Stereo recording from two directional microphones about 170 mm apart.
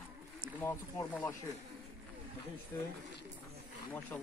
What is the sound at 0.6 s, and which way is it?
Speech, 15° left (ahead or behind).